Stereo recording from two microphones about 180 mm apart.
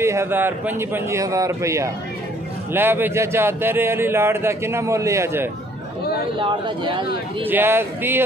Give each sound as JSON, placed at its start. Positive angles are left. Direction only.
{"t": 0.0, "sound": "speech", "side_deg": -15}
{"t": 6.4, "sound": "speech", "side_deg": -25}
{"t": 7.4, "sound": "speech", "side_deg": -10}